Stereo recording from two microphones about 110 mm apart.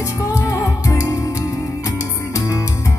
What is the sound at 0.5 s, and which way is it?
Music, 30° left (ahead or behind).